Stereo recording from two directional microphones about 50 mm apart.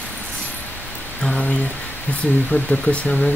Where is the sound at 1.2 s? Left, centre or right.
Centre.